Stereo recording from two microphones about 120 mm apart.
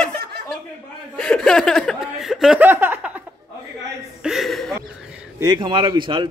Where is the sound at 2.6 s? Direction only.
15° right (ahead or behind).